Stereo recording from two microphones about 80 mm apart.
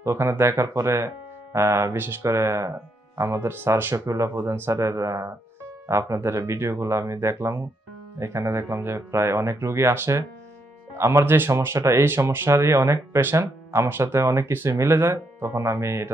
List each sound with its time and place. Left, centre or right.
0.0 s speech: right
3.9 s speech: right